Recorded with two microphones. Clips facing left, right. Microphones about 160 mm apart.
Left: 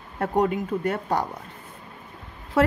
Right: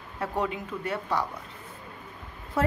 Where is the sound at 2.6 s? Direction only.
90° left.